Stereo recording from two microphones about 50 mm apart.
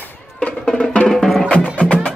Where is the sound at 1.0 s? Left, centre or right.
Centre.